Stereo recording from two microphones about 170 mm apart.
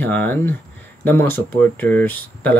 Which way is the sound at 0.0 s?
10° left (ahead or behind).